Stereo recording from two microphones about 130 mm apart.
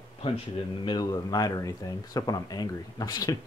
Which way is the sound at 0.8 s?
30° left (ahead or behind).